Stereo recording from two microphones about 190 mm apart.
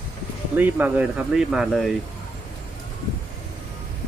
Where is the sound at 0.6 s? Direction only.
10° right (ahead or behind).